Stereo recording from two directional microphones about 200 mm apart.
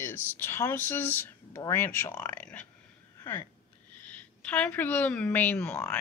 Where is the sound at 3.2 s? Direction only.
10° left (ahead or behind).